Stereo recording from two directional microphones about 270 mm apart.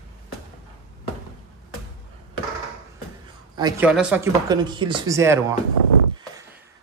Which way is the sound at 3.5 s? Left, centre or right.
Centre.